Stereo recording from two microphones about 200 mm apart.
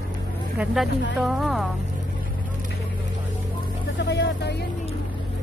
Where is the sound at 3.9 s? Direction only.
60° left (ahead or behind).